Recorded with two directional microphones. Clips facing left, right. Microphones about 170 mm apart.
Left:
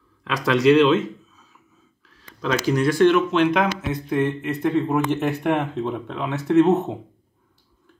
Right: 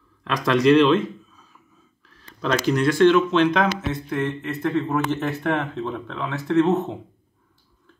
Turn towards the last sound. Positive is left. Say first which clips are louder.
# left 3 dB
turn(degrees=20)  # may be behind; listen again after turning